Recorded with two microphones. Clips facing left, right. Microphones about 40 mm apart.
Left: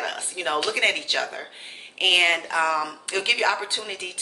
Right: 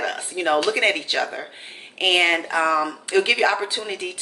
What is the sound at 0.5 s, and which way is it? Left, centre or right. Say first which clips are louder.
Speech: right 2 dB; centre.